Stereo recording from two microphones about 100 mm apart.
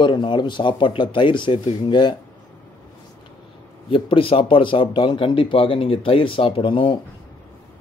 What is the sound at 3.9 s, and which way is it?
A man's voice, 60° left (ahead or behind).